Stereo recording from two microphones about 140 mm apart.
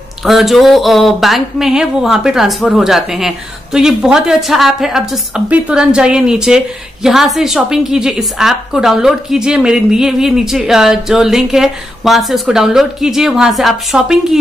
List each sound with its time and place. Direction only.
0.2 s speech: centre (ahead or behind)